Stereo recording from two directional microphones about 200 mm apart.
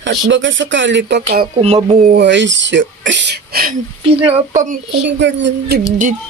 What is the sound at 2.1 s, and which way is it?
Speech, 65° right (ahead or behind).